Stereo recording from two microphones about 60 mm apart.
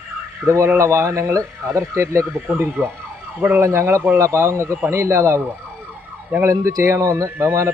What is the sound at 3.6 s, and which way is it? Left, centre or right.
Speech, right.